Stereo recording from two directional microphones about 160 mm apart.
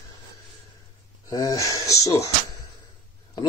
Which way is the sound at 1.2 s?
20° left (ahead or behind).